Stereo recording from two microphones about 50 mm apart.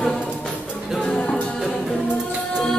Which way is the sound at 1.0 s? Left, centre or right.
Centre.